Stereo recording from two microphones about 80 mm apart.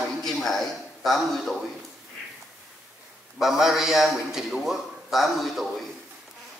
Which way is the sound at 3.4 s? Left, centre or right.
Centre.